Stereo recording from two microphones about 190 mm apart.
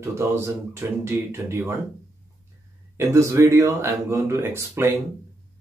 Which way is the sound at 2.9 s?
15° right (ahead or behind).